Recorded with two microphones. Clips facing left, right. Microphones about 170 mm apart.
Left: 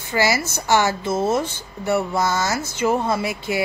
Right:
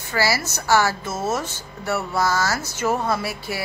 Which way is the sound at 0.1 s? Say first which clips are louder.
Left 2 dB; 20° left (ahead or behind).